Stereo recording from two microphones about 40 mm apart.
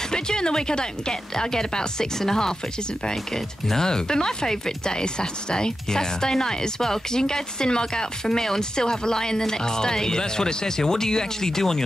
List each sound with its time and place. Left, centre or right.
0.1 s speech: centre
3.6 s speech: centre